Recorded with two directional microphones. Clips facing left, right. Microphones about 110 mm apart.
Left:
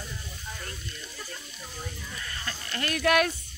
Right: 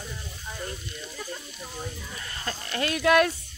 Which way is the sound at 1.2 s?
15° right (ahead or behind).